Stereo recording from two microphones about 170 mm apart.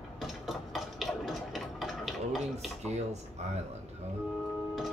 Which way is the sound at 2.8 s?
40° right (ahead or behind).